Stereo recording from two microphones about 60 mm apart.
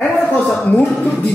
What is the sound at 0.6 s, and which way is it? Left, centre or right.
Speech, left.